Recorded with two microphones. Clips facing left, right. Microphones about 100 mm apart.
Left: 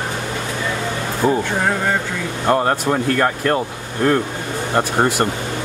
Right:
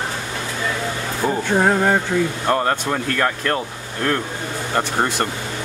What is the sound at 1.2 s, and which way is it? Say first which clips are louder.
Speech: left 4 dB; 5° left (ahead or behind).